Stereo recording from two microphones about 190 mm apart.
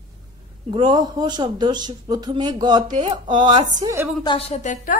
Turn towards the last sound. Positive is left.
turn(degrees=35)  # may be behind; listen again after turning